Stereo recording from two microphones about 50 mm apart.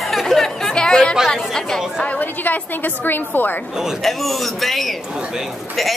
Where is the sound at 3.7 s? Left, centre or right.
Centre.